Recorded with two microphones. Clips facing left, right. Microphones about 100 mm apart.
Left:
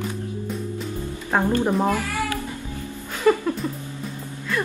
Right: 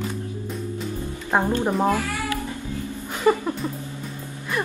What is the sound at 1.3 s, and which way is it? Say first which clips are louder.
Speech: left 1 dB; 15° right (ahead or behind).